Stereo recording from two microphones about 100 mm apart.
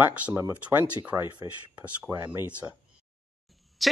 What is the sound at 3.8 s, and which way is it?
Speech, centre (ahead or behind).